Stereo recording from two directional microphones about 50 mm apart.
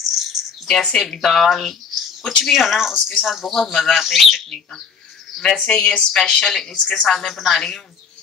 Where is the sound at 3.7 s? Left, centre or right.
Centre.